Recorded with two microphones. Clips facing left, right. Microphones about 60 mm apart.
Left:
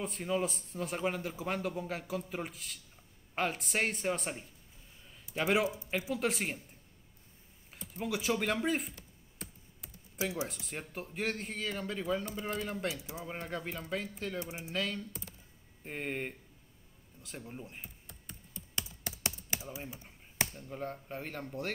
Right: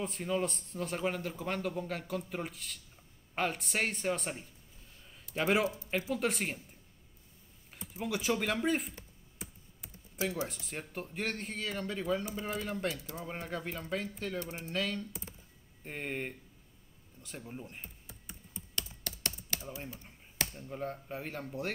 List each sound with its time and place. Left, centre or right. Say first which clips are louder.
0.0 s a man's voice: even; centre
7.9 s a man's voice: even; centre
9.4 s computer keyboard: even; centre
10.2 s speech: right 1 dB; centre
10.5 s a man's voice: right 1 dB; centre
12.4 s a man's voice: even; centre
12.6 s a man's voice: right 1 dB; centre
14.4 s speech: even; centre
14.7 s a man's voice: right 1 dB; centre
18.8 s typing: left 1 dB; centre
20.5 s a man's voice: right 1 dB; centre